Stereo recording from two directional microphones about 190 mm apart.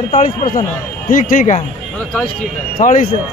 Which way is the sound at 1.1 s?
45° left (ahead or behind).